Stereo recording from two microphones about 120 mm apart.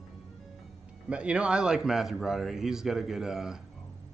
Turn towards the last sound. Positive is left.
turn(degrees=-5)  # may be behind; listen again after turning